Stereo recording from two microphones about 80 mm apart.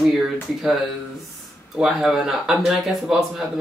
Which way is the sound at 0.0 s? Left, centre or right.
Centre.